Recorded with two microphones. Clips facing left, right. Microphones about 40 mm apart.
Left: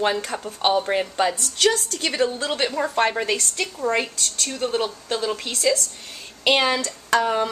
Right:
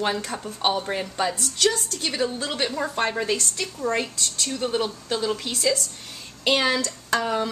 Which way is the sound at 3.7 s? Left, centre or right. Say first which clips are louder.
Left 2 dB; left.